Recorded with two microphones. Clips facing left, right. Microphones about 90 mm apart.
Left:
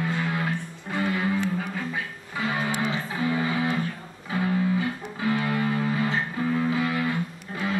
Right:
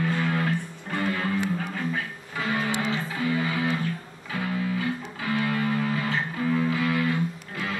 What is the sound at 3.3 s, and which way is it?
Music, 25° left (ahead or behind).